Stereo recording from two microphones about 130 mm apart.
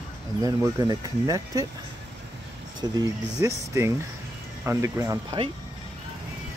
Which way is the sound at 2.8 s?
30° right (ahead or behind).